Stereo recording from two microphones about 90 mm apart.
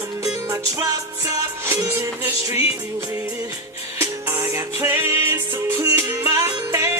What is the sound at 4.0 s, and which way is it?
Music, 30° right (ahead or behind).